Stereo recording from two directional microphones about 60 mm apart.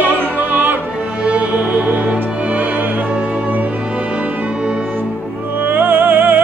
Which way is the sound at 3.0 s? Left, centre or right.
Centre.